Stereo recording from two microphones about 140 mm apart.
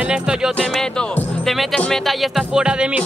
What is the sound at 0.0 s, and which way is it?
Speech, 5° right (ahead or behind).